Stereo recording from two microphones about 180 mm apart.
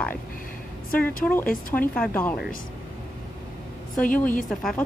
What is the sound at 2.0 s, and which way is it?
Speech, 10° left (ahead or behind).